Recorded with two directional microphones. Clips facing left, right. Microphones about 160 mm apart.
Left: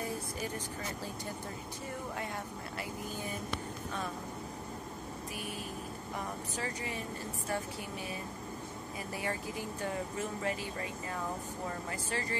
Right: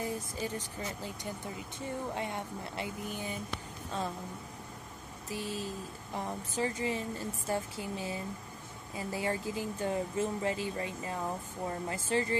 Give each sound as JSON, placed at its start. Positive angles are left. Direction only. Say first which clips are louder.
{"t": 2.1, "sound": "speech", "louder": "right 3 dB", "side_deg": -25}
{"t": 5.3, "sound": "speech", "louder": "right 7 dB", "side_deg": -25}